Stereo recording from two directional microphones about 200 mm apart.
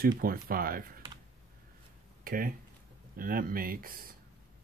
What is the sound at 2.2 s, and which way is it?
Speech, 45° right (ahead or behind).